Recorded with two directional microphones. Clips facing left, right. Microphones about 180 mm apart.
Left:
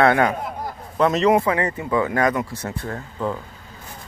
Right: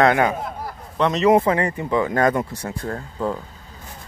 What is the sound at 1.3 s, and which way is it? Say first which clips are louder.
Speech: right 2 dB; 25° right (ahead or behind).